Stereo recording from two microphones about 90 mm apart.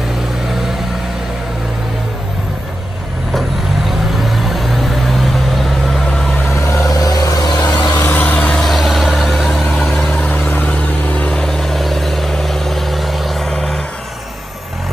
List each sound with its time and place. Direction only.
0.5 s vehicle: 5° right (ahead or behind)
3.3 s vehicle: centre (ahead or behind)
6.5 s vehicle: 35° left (ahead or behind)
8.0 s vehicle: 20° left (ahead or behind)